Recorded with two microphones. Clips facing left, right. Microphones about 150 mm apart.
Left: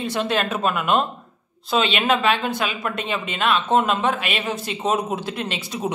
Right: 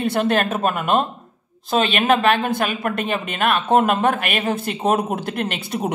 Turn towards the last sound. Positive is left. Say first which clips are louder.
# right 2 dB
turn(degrees=-55)  # may be behind; listen again after turning